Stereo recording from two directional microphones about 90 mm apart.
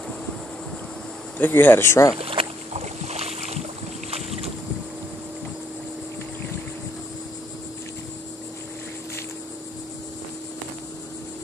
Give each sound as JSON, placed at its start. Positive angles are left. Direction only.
{"t": 1.4, "sound": "speech", "side_deg": 20}
{"t": 2.1, "sound": "speech", "side_deg": -90}